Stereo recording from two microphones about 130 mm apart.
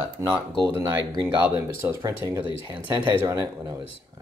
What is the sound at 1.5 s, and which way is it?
Speech, 20° right (ahead or behind).